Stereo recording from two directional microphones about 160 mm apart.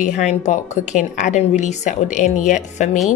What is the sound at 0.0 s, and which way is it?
A woman's voice, 50° left (ahead or behind).